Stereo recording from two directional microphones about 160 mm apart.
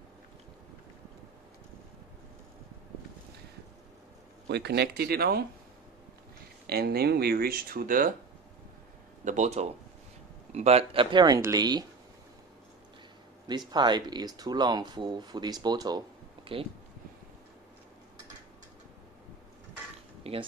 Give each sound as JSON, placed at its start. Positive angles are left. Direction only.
{"t": 4.5, "sound": "speech", "side_deg": -90}
{"t": 6.7, "sound": "speech", "side_deg": -75}
{"t": 9.2, "sound": "speech", "side_deg": -50}
{"t": 13.7, "sound": "speech", "side_deg": -30}
{"t": 20.2, "sound": "a sound", "side_deg": -35}